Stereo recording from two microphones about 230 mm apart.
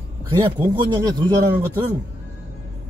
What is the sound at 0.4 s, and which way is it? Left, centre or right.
Speech, centre.